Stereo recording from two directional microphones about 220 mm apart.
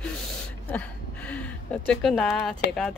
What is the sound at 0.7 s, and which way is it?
Speech, 5° left (ahead or behind).